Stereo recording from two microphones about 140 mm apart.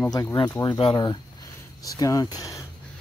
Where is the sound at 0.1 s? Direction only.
25° left (ahead or behind).